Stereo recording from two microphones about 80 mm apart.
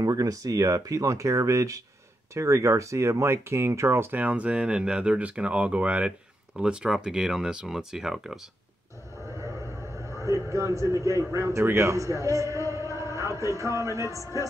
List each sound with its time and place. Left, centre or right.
0.0 s speech: right; by 8.4 s centre
9.4 s a man's voice: right